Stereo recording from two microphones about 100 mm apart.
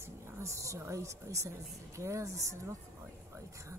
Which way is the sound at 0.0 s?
30° right (ahead or behind).